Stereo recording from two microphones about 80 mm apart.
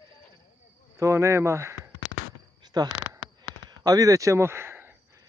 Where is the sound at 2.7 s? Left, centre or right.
Right.